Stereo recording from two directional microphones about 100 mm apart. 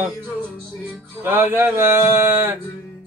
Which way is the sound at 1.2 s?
20° right (ahead or behind).